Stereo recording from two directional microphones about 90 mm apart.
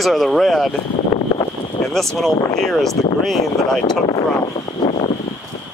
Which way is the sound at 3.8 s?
50° left (ahead or behind).